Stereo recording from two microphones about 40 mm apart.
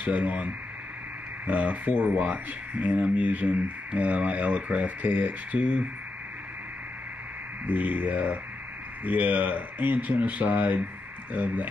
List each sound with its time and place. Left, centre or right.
0.0 s speech: right
7.6 s speech: right